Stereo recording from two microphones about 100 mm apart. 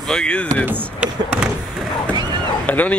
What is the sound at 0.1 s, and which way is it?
Speech, 10° left (ahead or behind).